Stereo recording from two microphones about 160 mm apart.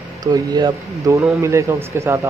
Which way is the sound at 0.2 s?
25° right (ahead or behind).